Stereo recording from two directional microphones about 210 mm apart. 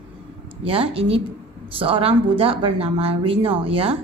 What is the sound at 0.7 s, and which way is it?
Speech, 25° right (ahead or behind).